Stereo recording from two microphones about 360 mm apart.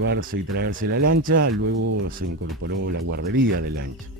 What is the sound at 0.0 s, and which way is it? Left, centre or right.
Speech, right.